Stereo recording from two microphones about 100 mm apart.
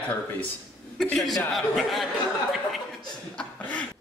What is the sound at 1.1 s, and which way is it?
Speech, 5° left (ahead or behind).